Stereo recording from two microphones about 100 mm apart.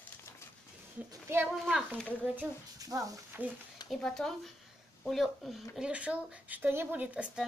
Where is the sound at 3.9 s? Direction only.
5° left (ahead or behind).